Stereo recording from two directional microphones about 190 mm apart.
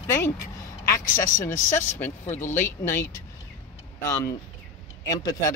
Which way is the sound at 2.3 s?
40° left (ahead or behind).